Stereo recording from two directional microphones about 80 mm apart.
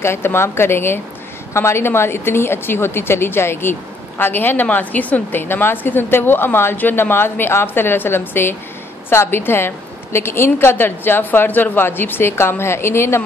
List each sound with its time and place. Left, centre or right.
0.0 s a woman's voice: left